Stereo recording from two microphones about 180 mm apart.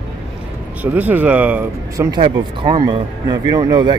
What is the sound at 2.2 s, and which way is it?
Speech, 25° right (ahead or behind).